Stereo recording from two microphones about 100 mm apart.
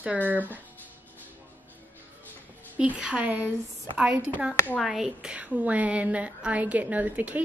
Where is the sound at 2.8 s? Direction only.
10° right (ahead or behind).